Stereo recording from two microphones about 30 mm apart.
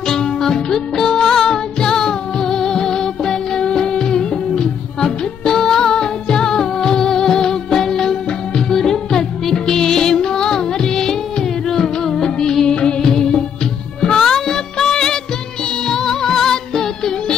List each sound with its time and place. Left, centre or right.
0.1 s music: centre